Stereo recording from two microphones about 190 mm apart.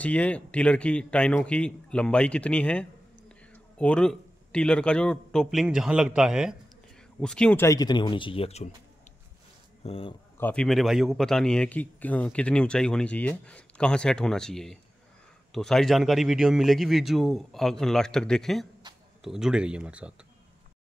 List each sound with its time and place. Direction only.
0.0 s speech: 5° left (ahead or behind); by 8.6 s 30° left (ahead or behind)
9.8 s speech: 30° left (ahead or behind)
10.3 s a man's voice: 5° left (ahead or behind)